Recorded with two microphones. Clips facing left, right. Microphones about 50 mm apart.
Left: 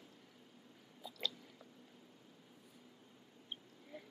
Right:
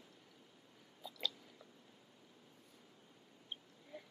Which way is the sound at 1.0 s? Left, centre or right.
Centre.